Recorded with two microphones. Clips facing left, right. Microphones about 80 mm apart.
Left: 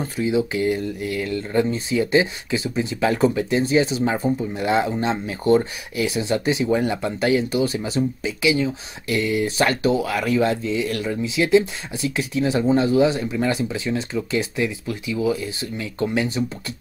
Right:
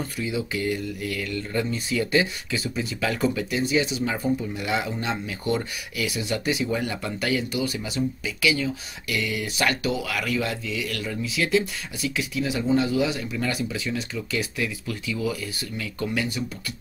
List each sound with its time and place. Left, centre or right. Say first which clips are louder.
0.0 s speech: left 7 dB; left